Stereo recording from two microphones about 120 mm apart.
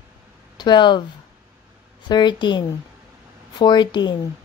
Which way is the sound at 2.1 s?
40° left (ahead or behind).